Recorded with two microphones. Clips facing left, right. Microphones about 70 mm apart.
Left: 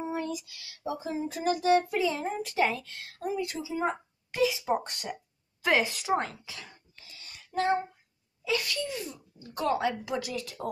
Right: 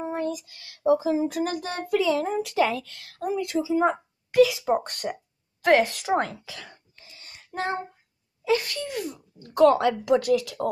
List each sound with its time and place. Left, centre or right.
0.1 s a sound: right
0.9 s speech: right
1.4 s child singing: right
1.9 s a woman's voice: right
4.8 s child singing: right
5.6 s a woman's voice: right
7.0 s a sound: right
8.5 s speech: right
9.4 s speech: right